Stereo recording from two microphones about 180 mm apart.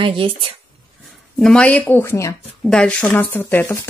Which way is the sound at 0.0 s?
30° right (ahead or behind).